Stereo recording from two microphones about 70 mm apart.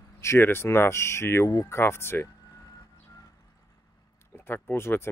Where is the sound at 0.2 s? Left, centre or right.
Left.